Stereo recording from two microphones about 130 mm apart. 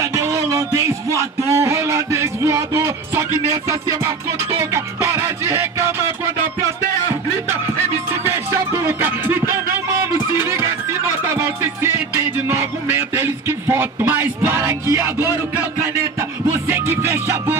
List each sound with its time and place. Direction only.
0.0 s music: 25° right (ahead or behind)
4.7 s music: 20° right (ahead or behind)
8.1 s music: 20° right (ahead or behind)
16.6 s music: 15° right (ahead or behind)